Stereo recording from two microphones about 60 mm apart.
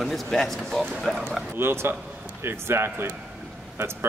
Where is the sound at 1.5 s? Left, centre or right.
Right.